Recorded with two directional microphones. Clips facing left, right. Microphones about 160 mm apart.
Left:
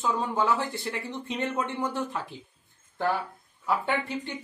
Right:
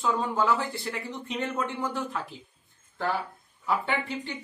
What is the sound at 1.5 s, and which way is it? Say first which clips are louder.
Speech: left 1 dB; 15° left (ahead or behind).